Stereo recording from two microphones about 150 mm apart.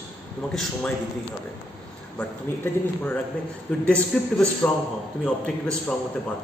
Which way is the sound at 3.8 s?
10° left (ahead or behind).